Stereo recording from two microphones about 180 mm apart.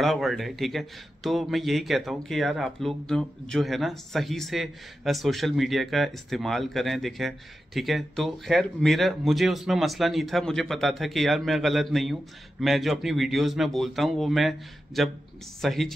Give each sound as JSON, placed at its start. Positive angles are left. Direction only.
{"t": 0.0, "sound": "speech", "side_deg": 0}